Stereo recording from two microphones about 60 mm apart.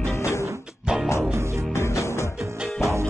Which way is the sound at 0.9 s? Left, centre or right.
Centre.